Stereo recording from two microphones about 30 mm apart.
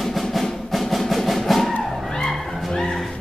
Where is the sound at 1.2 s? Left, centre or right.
Centre.